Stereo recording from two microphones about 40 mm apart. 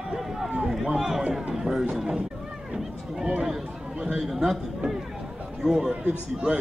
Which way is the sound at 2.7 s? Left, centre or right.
Centre.